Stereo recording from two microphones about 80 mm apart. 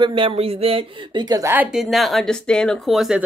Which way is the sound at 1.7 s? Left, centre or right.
Centre.